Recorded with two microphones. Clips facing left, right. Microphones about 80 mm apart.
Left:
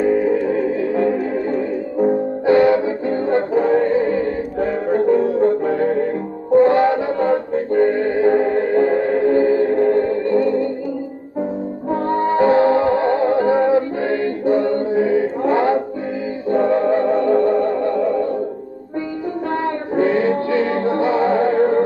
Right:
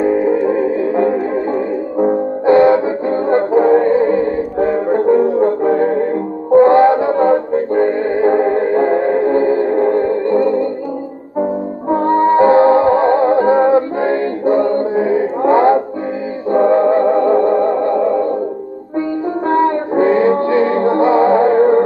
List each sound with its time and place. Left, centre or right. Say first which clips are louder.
0.0 s music: right 3 dB; right
11.9 s music: right 6 dB; right
19.5 s music: right 8 dB; right